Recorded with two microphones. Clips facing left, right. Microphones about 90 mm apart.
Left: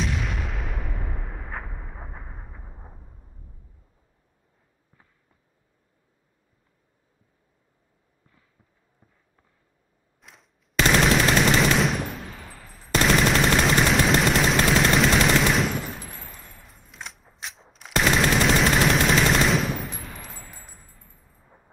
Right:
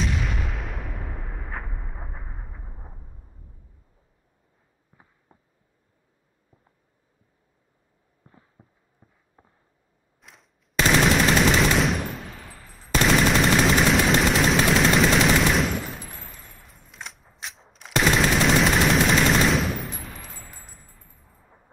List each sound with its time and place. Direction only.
0.0 s artillery fire: centre (ahead or behind)
4.9 s a sound: 10° right (ahead or behind)
8.3 s a sound: 30° right (ahead or behind)
10.2 s machine gun: centre (ahead or behind)
12.9 s gunshot: centre (ahead or behind)
16.7 s machine gun: centre (ahead or behind)